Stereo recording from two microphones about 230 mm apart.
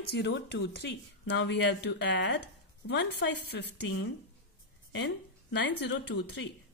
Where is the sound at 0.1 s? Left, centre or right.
Left.